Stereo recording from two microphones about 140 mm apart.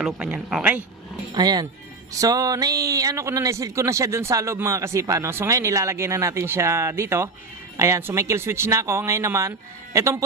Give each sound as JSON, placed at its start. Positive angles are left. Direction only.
{"t": 0.0, "sound": "speech", "side_deg": -5}
{"t": 1.3, "sound": "a man's voice", "side_deg": -30}